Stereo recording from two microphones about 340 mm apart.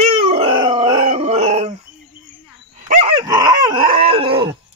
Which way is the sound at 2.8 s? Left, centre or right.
Centre.